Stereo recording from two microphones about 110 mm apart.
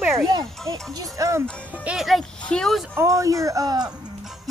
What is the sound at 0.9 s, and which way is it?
Speech, 30° right (ahead or behind).